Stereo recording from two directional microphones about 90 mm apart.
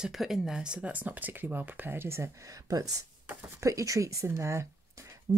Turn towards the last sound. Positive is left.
turn(degrees=-35)  # may be behind; listen again after turning